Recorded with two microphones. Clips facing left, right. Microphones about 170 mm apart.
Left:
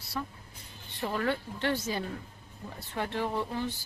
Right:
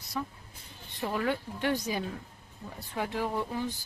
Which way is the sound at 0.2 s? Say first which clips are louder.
Right 1 dB; 10° right (ahead or behind).